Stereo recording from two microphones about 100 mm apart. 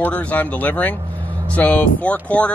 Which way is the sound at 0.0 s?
15° left (ahead or behind).